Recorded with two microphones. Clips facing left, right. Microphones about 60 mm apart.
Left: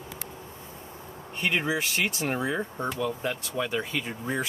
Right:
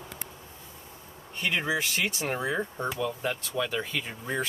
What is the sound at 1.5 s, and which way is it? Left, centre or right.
Speech, centre.